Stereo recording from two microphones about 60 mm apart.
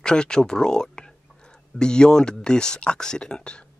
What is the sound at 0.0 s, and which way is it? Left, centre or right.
Speech, centre.